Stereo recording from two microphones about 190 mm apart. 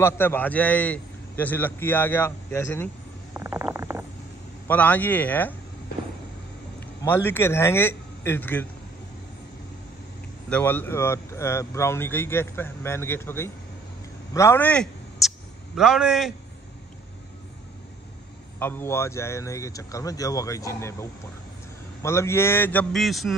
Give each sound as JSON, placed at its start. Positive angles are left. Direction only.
{"t": 0.0, "sound": "speech", "side_deg": 10}
{"t": 3.3, "sound": "stomach rumble", "side_deg": -10}
{"t": 4.6, "sound": "speech", "side_deg": 10}
{"t": 7.0, "sound": "a man's voice", "side_deg": 10}
{"t": 10.5, "sound": "speech", "side_deg": 10}
{"t": 14.3, "sound": "a sound", "side_deg": 15}
{"t": 18.6, "sound": "speech", "side_deg": 10}